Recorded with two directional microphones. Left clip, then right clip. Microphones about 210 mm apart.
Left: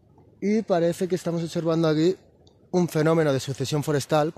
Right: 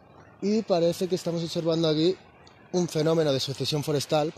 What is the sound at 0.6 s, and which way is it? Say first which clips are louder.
Speech: left 1 dB; 35° left (ahead or behind).